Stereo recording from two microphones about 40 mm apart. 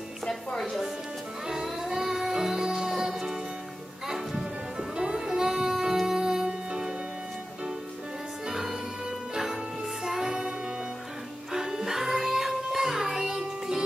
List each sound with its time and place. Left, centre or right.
0.6 s speech: centre
1.5 s music: centre
4.3 s music: right
10.0 s music: centre
11.5 s music: centre